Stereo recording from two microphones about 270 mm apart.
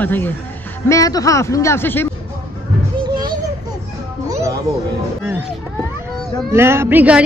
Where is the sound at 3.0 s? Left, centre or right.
Centre.